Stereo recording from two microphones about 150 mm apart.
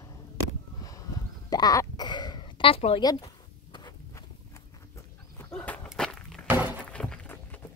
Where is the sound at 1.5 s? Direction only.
25° left (ahead or behind).